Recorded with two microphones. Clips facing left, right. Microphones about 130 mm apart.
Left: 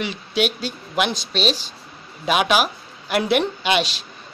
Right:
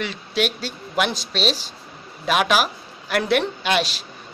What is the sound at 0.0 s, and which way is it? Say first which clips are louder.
A woman's voice: left 1 dB; centre (ahead or behind).